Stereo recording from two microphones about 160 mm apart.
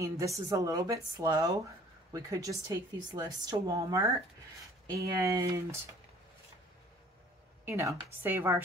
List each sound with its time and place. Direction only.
0.0 s a woman's voice: 20° right (ahead or behind)
7.6 s speech: 15° right (ahead or behind)